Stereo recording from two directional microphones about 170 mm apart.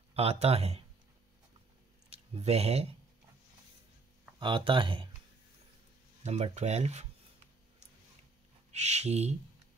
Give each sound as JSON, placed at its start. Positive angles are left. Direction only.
{"t": 0.1, "sound": "speech", "side_deg": -35}
{"t": 2.0, "sound": "speech", "side_deg": -40}
{"t": 4.4, "sound": "speech", "side_deg": -30}
{"t": 6.2, "sound": "speech", "side_deg": -40}
{"t": 8.7, "sound": "speech", "side_deg": -40}